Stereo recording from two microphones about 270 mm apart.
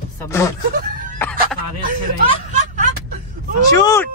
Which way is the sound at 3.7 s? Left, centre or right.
Centre.